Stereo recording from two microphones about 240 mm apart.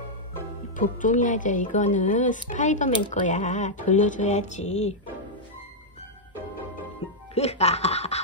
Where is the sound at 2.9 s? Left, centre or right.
Left.